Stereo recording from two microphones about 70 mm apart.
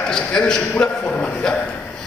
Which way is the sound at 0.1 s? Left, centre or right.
Centre.